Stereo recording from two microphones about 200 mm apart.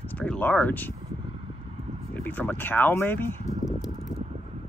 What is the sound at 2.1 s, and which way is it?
Speech, 10° left (ahead or behind).